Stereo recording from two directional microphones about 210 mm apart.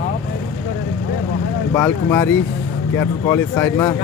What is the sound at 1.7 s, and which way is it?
Speech, 10° left (ahead or behind).